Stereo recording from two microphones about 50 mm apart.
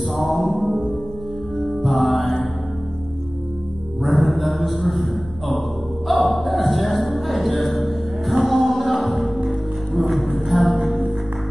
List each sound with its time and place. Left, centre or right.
0.2 s mantra: centre
0.6 s music: centre
1.8 s mantra: centre
4.0 s a sound: centre
6.0 s music: centre